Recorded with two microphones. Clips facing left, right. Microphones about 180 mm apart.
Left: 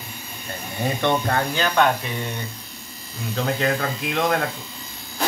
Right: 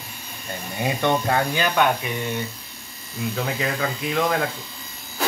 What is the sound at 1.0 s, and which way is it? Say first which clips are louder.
Speech: right 1 dB; 10° right (ahead or behind).